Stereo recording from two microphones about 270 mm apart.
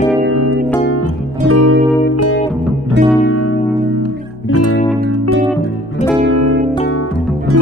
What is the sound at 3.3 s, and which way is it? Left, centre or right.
Music, left.